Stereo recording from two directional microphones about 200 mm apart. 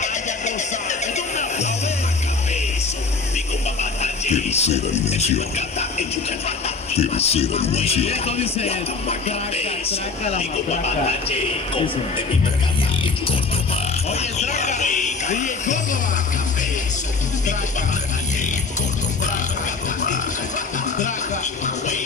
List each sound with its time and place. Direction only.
0.8 s music: 35° left (ahead or behind)
4.0 s a man's voice: 35° left (ahead or behind)
9.8 s a man's voice: 35° left (ahead or behind)
14.4 s a sound: 35° left (ahead or behind)